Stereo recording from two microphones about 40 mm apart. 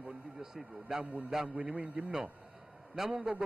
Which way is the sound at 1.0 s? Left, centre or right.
Right.